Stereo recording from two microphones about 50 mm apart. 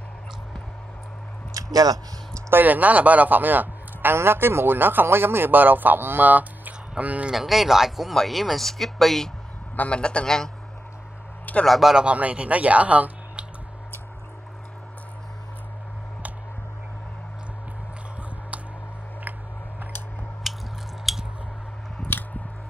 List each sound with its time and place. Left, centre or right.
2.5 s a man's voice: right
4.1 s a man's voice: right
7.3 s speech: centre
9.8 s a man's voice: left
11.6 s speech: centre
12.1 s speech: right
20.5 s biting: centre
21.1 s squish: centre